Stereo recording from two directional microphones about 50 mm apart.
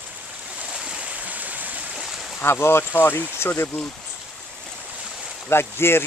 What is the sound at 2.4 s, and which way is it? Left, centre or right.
Speech, left.